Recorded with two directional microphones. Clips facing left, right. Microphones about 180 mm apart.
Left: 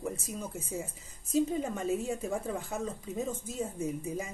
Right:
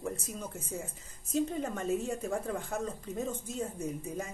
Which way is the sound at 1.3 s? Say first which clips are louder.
Left 2 dB; 10° left (ahead or behind).